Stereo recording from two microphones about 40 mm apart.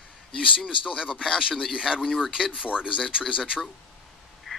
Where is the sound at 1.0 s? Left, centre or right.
Centre.